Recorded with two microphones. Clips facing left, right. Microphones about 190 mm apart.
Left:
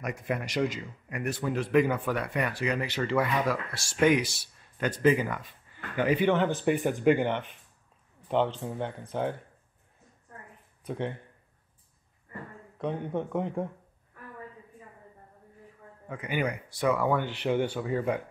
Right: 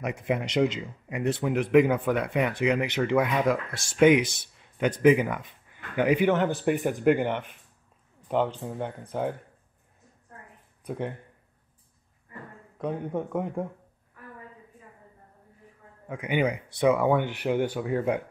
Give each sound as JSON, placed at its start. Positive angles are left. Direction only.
{"t": 0.0, "sound": "a man's voice", "side_deg": -20}
{"t": 10.9, "sound": "speech", "side_deg": -5}
{"t": 12.7, "sound": "a man's voice", "side_deg": -5}
{"t": 16.1, "sound": "speech", "side_deg": -15}